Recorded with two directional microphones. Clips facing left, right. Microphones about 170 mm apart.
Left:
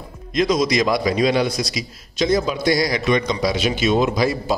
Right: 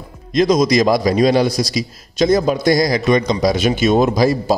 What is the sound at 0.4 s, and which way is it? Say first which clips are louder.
A man's voice: right 5 dB; 40° right (ahead or behind).